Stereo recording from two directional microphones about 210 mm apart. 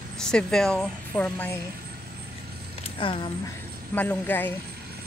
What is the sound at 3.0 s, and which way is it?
Speech, 25° left (ahead or behind).